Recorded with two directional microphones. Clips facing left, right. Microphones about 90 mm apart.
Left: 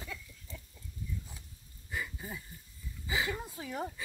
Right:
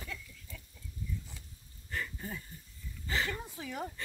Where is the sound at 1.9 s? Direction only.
10° left (ahead or behind).